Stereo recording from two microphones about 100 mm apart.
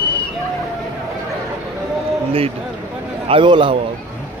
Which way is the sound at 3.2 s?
55° right (ahead or behind).